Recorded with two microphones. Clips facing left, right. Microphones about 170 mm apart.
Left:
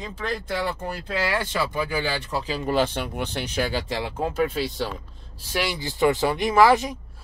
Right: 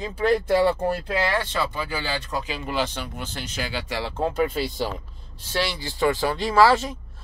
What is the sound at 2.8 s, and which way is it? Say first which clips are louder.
Speech: left 3 dB; 55° left (ahead or behind).